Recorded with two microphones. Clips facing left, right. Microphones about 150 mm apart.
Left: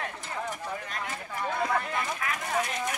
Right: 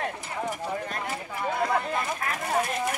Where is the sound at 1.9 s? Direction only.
40° right (ahead or behind).